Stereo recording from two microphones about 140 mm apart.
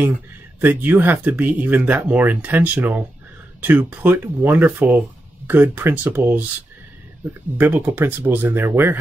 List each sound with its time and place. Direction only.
0.6 s speech: 15° right (ahead or behind)
7.5 s speech: 15° right (ahead or behind)